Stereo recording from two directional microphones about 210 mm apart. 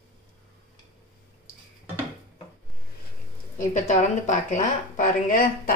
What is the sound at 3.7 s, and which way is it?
Speech, 35° left (ahead or behind).